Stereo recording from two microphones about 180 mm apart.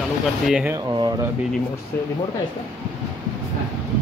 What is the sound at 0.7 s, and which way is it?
Speech, 20° right (ahead or behind).